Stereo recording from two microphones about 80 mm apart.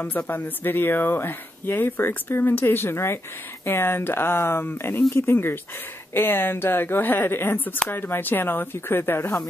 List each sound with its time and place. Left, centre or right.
0.3 s speech: left